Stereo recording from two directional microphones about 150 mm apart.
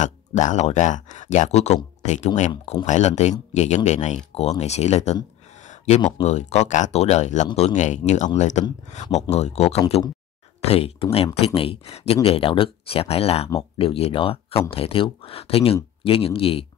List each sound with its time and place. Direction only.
0.0 s speech: 55° left (ahead or behind)